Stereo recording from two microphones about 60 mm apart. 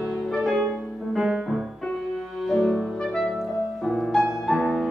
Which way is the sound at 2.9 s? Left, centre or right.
Centre.